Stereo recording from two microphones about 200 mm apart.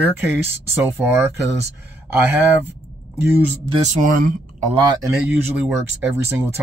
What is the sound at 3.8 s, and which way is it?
Speech, 40° right (ahead or behind).